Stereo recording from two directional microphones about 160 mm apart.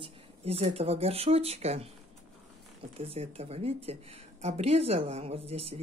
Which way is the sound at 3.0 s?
40° right (ahead or behind).